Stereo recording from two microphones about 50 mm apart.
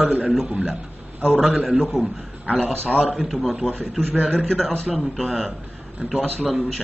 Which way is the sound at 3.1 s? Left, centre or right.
Centre.